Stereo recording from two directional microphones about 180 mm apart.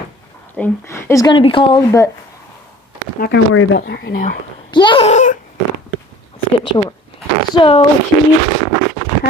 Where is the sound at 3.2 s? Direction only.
70° left (ahead or behind).